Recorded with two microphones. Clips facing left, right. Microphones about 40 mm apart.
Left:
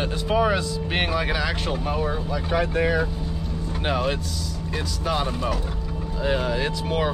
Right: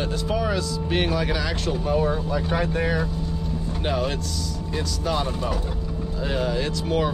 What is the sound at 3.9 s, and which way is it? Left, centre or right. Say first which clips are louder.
Speech: left 1 dB; centre.